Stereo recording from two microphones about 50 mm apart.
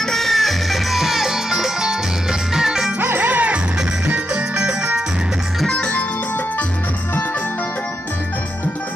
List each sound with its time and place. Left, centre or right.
0.0 s music: centre
3.0 s music: right
4.6 s music: centre
5.7 s music: centre